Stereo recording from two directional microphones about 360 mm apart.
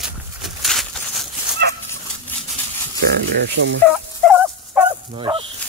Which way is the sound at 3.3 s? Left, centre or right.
Right.